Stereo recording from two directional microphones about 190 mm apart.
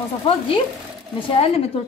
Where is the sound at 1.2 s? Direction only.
30° left (ahead or behind).